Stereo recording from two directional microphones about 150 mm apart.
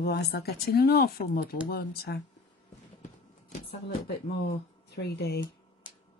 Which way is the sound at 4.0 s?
90° left.